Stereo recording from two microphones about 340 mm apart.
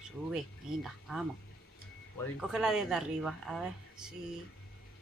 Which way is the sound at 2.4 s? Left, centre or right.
Centre.